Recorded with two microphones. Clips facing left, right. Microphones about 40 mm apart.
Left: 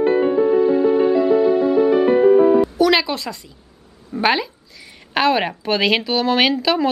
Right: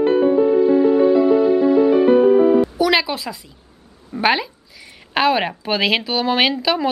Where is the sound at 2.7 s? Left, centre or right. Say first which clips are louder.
Left 1 dB; centre.